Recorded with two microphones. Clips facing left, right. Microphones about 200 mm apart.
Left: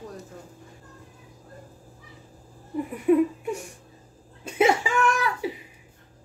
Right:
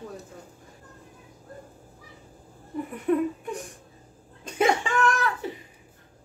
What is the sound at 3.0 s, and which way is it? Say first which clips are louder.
Laughter: left 4 dB; 10° left (ahead or behind).